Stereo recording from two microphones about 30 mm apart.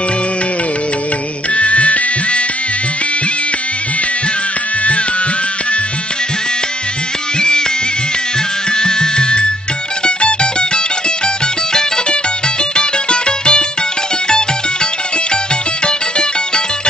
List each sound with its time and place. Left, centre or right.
1.5 s music: left
7.3 s music: left
8.7 s music: left
12.7 s music: left
15.8 s music: left